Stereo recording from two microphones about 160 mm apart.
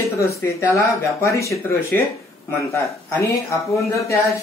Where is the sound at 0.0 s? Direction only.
20° left (ahead or behind).